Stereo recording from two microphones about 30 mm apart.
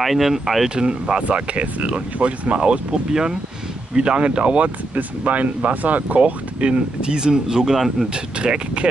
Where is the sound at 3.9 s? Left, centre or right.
Right.